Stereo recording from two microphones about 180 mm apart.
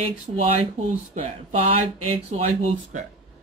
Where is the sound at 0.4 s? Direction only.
40° right (ahead or behind).